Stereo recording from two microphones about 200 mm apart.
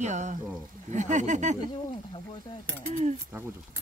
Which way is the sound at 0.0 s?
40° right (ahead or behind).